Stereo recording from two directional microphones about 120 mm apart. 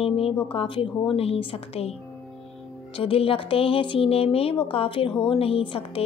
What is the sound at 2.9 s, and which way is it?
Speech, 50° left (ahead or behind).